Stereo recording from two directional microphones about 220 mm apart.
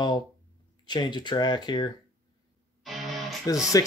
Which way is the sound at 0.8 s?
20° left (ahead or behind).